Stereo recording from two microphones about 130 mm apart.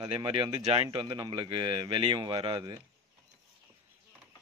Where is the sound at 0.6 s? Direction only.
50° right (ahead or behind).